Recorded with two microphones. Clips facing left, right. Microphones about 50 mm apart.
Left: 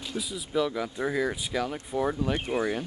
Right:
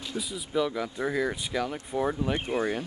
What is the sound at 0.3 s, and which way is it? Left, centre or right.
Speech, centre.